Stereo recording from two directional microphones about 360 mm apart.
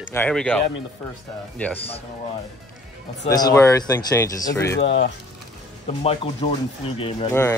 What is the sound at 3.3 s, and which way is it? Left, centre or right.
Speech, centre.